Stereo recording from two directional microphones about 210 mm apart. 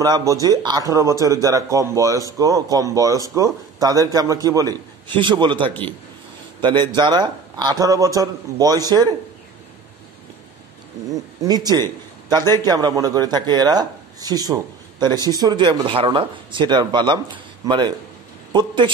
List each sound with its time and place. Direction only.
0.0 s speech: 15° right (ahead or behind)
11.4 s a man's voice: 20° right (ahead or behind)